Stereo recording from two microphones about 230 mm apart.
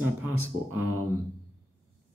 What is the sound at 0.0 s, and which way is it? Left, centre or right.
Speech, right.